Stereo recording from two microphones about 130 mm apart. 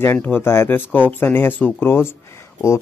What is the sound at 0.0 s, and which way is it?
Speech, 15° left (ahead or behind).